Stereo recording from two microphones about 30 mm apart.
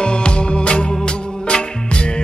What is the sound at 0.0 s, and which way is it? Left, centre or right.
Music, left.